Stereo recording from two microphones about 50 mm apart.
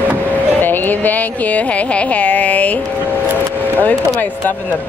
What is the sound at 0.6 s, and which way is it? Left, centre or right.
Music, left.